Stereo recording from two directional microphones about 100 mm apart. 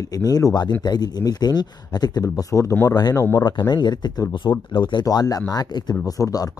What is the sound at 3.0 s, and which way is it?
Speech, 40° left (ahead or behind).